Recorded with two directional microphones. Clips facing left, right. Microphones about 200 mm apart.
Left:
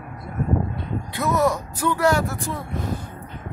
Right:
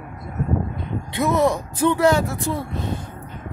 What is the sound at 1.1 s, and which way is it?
Speech, 25° right (ahead or behind).